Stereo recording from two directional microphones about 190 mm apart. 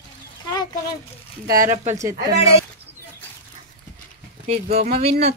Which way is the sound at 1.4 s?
45° right (ahead or behind).